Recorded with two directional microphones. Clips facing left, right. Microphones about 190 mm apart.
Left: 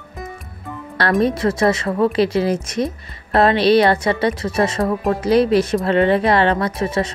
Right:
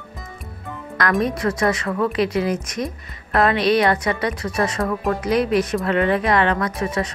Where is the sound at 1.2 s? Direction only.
25° left (ahead or behind).